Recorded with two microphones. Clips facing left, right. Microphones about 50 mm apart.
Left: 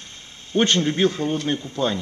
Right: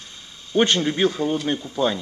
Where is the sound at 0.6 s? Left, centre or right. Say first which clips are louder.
Even; centre.